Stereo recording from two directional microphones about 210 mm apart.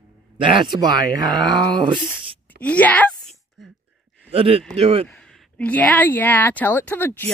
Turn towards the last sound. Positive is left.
turn(degrees=10)  # may be behind; listen again after turning